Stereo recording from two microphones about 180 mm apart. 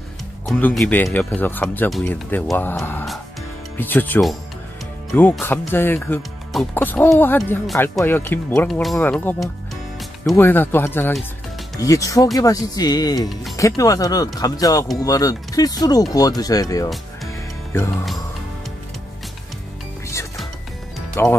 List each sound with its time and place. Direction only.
0.5 s speech: 5° left (ahead or behind)
21.2 s speech: 15° left (ahead or behind)